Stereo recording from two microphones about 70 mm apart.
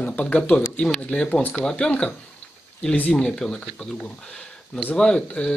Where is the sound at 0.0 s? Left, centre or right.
Left.